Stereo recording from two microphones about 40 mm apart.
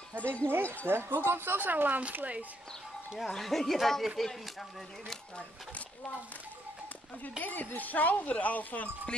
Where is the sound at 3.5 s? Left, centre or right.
Centre.